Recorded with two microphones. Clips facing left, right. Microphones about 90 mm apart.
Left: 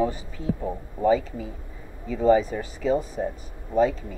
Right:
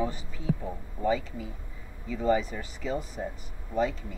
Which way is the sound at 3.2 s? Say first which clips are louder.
Left 7 dB; 65° left (ahead or behind).